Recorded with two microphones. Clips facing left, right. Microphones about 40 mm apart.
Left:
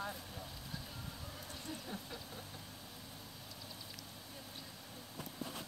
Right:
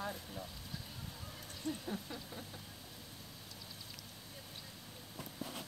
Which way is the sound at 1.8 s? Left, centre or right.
Centre.